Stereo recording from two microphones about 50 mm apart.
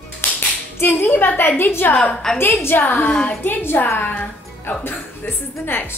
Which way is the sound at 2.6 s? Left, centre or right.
Left.